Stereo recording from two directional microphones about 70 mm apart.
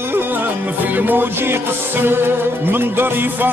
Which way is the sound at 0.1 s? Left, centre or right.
Right.